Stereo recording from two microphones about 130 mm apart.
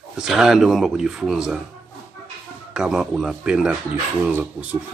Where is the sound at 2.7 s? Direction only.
5° right (ahead or behind).